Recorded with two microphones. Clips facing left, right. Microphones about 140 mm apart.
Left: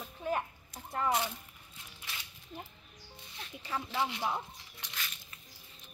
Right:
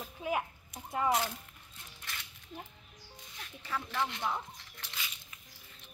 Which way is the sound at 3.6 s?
15° left (ahead or behind).